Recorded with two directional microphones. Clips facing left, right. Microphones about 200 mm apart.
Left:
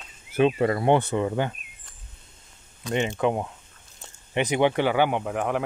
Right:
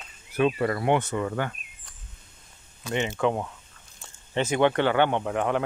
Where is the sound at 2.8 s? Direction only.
15° left (ahead or behind).